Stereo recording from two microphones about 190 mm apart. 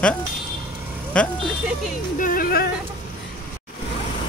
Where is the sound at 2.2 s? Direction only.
50° left (ahead or behind).